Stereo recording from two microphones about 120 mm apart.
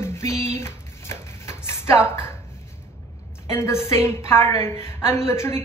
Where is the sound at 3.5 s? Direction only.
20° left (ahead or behind).